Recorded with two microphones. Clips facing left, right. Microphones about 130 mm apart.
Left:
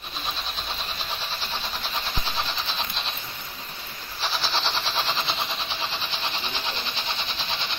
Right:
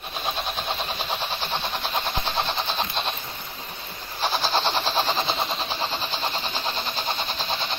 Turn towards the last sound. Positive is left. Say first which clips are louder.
# right 4 dB
turn(degrees=-45)  # may be behind; listen again after turning